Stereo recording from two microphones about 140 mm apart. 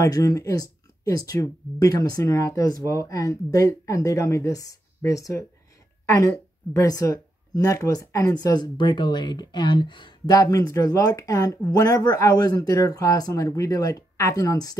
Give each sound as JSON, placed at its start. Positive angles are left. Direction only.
{"t": 0.0, "sound": "a woman's voice", "side_deg": 25}